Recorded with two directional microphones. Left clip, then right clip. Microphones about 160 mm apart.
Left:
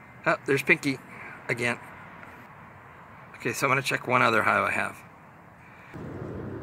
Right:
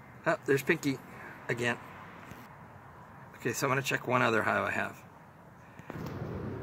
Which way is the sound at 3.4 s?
10° left (ahead or behind).